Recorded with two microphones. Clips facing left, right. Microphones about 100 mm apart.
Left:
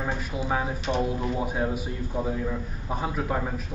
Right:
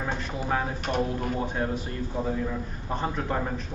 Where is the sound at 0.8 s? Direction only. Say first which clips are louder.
Left 1 dB; 50° right (ahead or behind).